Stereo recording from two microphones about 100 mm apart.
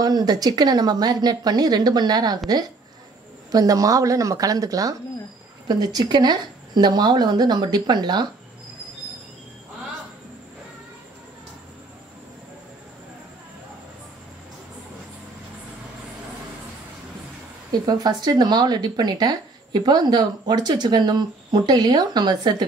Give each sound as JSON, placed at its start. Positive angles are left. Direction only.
{"t": 0.0, "sound": "speech", "side_deg": -40}
{"t": 17.8, "sound": "speech", "side_deg": -40}